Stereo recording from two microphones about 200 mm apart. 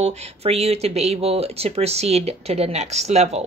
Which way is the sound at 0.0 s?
35° right (ahead or behind).